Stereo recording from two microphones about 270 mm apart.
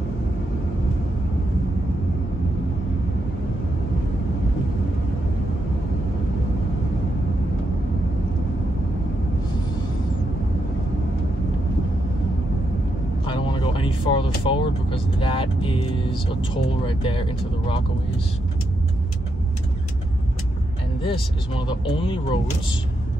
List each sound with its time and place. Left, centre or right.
13.3 s speech: centre
21.0 s speech: centre